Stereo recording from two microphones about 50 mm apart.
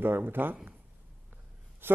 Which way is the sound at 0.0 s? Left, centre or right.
Right.